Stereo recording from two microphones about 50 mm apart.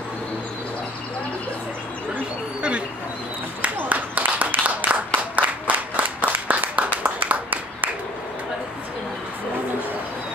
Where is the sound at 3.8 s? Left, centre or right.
Right.